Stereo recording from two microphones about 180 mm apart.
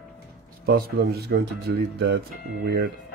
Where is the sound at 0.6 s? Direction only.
60° right (ahead or behind).